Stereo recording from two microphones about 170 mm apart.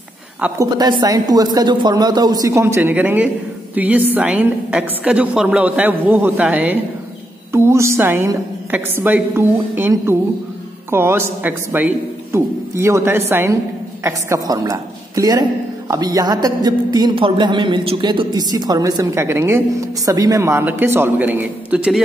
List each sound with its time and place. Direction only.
0.7 s a woman's voice: 25° right (ahead or behind); by 22.0 s 5° right (ahead or behind)